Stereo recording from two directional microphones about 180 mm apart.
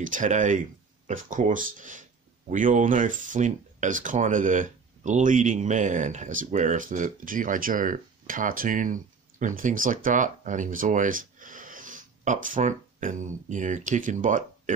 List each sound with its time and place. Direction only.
0.0 s speech: 45° right (ahead or behind)